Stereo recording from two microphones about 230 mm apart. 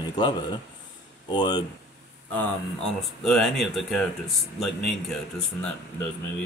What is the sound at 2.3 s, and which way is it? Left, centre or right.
Speech, centre.